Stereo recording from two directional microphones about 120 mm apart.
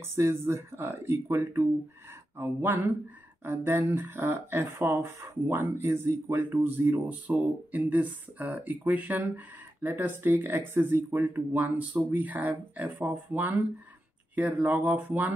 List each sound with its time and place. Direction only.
0.0 s speech: 20° right (ahead or behind)